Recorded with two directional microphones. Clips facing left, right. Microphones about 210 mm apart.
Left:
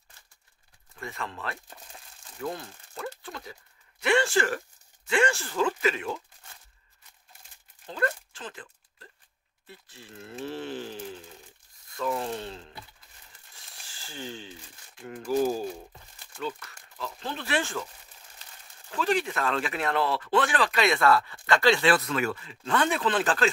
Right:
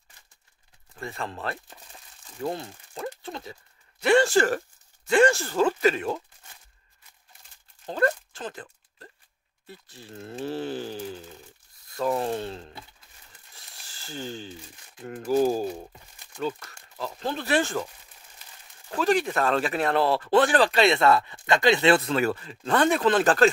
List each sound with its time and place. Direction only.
0.9 s speech: 30° right (ahead or behind)
4.0 s speech: 40° right (ahead or behind)
7.8 s a sound: 40° right (ahead or behind)
9.8 s speech: 35° right (ahead or behind)
12.0 s speech: 40° right (ahead or behind)
14.1 s speech: 40° right (ahead or behind)
16.3 s speech: 40° right (ahead or behind)
18.9 s speech: 40° right (ahead or behind)